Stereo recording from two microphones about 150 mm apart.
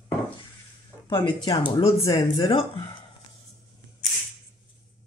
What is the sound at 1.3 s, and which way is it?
Speech, 35° left (ahead or behind).